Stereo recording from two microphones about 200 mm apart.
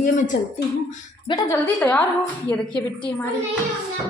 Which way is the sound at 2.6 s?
25° left (ahead or behind).